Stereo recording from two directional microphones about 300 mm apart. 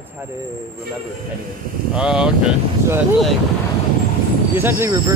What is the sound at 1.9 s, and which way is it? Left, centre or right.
Speech, centre.